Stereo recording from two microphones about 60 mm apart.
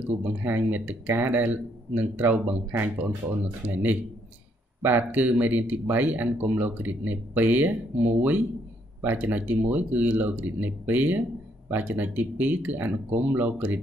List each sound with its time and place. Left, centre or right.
0.2 s speech: right